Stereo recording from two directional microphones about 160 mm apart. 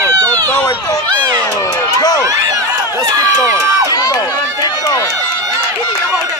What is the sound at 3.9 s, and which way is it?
Run, 25° left (ahead or behind).